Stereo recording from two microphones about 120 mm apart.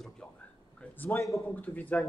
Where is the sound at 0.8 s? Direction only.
15° left (ahead or behind).